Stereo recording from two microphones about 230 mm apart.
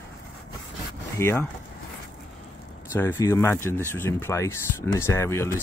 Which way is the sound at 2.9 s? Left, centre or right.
Centre.